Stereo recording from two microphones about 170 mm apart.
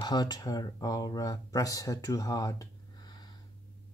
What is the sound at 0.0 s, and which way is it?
Speech, 25° left (ahead or behind).